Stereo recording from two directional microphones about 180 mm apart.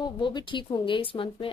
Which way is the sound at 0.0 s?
25° left (ahead or behind).